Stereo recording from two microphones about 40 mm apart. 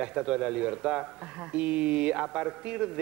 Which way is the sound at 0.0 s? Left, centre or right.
Right.